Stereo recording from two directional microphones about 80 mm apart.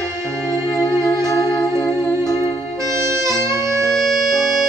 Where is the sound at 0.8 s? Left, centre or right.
Left.